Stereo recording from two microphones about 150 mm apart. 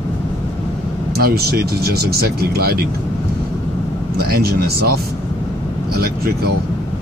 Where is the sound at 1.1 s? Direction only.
90° right.